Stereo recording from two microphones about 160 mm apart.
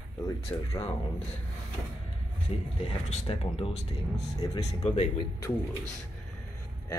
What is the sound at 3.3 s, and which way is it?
Speech, 35° left (ahead or behind).